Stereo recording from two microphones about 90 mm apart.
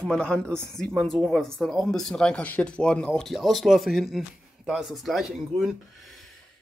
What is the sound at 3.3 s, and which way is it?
Speech, centre (ahead or behind).